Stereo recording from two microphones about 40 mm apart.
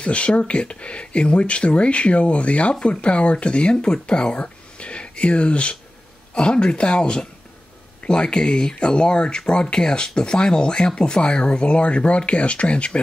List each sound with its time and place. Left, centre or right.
0.0 s speech: left